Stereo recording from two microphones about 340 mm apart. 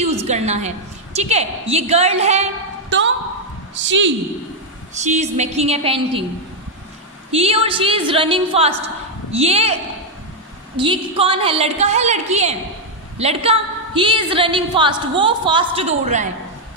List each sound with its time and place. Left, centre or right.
0.2 s a woman's voice: centre
3.7 s a woman's voice: right
4.9 s a woman's voice: centre
7.2 s a woman's voice: centre
10.8 s a woman's voice: centre